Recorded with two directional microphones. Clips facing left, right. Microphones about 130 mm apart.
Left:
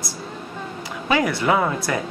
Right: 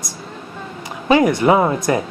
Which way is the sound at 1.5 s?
30° right (ahead or behind).